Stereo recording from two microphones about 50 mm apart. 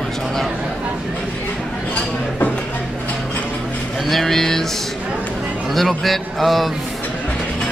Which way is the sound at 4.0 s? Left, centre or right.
Centre.